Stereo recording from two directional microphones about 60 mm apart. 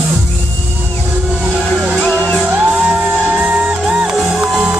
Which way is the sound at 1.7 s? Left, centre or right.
Centre.